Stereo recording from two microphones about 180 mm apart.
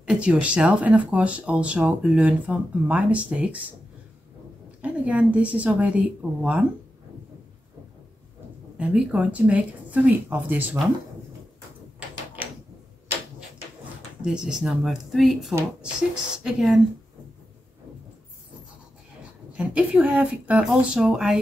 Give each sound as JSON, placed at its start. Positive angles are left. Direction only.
{"t": 0.0, "sound": "speech", "side_deg": -5}
{"t": 4.8, "sound": "speech", "side_deg": -10}
{"t": 8.7, "sound": "speech", "side_deg": -5}
{"t": 14.2, "sound": "speech", "side_deg": -5}
{"t": 19.5, "sound": "speech", "side_deg": -5}